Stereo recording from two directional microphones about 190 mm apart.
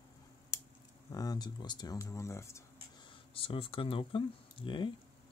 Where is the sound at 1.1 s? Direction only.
20° left (ahead or behind).